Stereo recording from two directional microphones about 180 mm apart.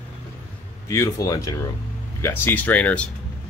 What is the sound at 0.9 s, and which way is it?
Speech, 15° left (ahead or behind).